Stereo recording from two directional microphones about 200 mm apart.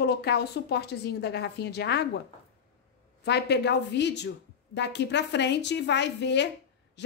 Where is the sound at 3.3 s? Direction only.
55° left (ahead or behind).